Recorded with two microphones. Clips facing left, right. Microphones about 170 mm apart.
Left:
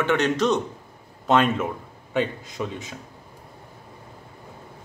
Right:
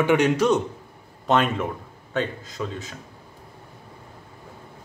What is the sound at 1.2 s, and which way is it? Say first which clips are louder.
Speech: left 1 dB; centre (ahead or behind).